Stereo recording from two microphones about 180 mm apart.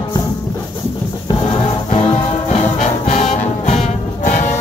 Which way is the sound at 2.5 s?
40° left (ahead or behind).